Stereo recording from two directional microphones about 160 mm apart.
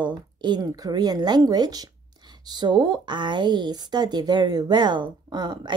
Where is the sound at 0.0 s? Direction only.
25° right (ahead or behind).